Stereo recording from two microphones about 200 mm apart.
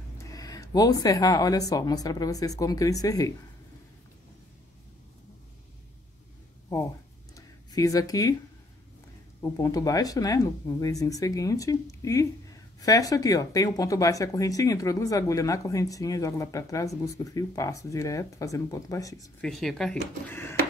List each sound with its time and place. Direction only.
0.2 s speech: 20° left (ahead or behind)
7.3 s a sound: 15° left (ahead or behind)
9.4 s speech: 15° left (ahead or behind)
19.4 s speech: centre (ahead or behind)